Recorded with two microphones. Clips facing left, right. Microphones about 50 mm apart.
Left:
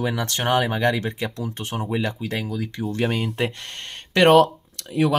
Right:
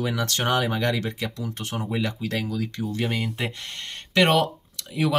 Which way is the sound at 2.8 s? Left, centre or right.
Left.